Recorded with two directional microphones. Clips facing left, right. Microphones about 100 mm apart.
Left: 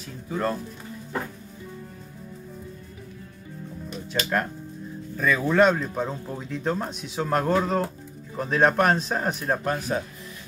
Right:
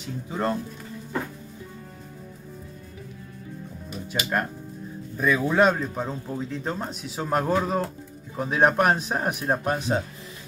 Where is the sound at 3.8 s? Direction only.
10° right (ahead or behind).